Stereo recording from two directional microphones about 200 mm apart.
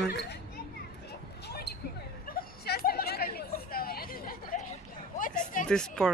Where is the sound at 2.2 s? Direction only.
50° left (ahead or behind).